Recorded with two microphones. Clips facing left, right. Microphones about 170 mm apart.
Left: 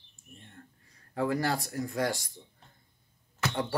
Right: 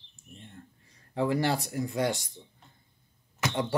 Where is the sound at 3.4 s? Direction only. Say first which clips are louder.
Right 2 dB; 20° right (ahead or behind).